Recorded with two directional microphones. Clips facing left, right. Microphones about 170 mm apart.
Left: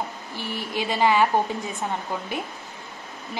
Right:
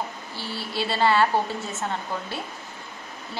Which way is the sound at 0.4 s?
15° left (ahead or behind).